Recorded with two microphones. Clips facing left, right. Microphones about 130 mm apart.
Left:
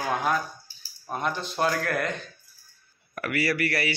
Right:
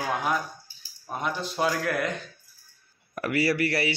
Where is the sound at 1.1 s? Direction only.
10° right (ahead or behind).